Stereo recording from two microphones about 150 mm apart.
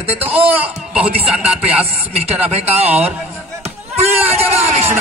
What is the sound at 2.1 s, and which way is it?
Speech, 45° right (ahead or behind).